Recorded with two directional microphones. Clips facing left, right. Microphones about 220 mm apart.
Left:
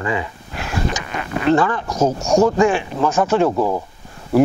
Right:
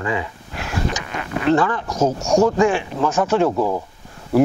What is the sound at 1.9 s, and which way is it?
Speech, 30° left (ahead or behind).